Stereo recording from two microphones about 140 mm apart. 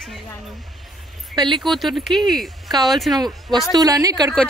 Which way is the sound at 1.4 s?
30° right (ahead or behind).